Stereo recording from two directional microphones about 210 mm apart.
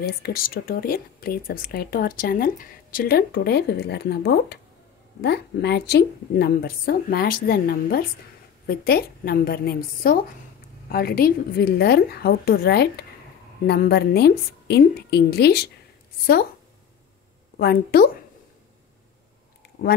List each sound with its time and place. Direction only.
0.0 s speech: 45° left (ahead or behind)
17.6 s speech: 45° left (ahead or behind)